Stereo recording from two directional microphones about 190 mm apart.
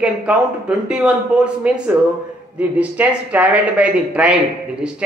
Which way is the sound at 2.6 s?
10° right (ahead or behind).